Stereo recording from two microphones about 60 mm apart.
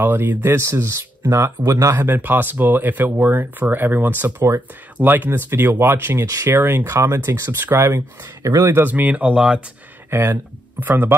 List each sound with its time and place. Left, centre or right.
0.0 s speech: right
1.7 s speech: right
2.0 s speech: right
6.9 s speech: right
8.4 s speech: right
8.8 s speech: right
10.0 s speech: right
10.3 s speech: right